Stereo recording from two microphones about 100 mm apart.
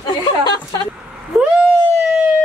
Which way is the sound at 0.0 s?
45° left (ahead or behind).